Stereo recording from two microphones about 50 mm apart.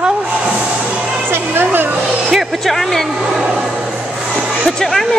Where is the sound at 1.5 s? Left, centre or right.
Right.